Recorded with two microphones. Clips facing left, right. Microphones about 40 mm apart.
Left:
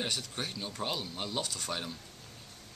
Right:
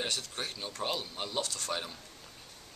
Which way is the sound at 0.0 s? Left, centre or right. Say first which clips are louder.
Even; centre.